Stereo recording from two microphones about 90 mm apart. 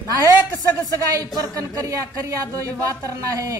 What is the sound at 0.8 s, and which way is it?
Speech, 45° right (ahead or behind).